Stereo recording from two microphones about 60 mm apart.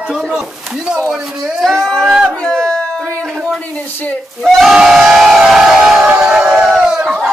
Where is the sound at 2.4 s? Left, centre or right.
Centre.